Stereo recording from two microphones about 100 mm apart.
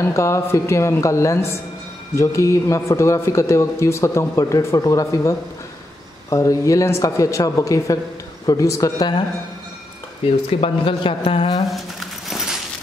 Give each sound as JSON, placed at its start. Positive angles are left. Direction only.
{"t": 0.0, "sound": "a woman's voice", "side_deg": 30}
{"t": 6.3, "sound": "a man's voice", "side_deg": 35}
{"t": 10.6, "sound": "a man's voice", "side_deg": 60}
{"t": 11.6, "sound": "a sound", "side_deg": 0}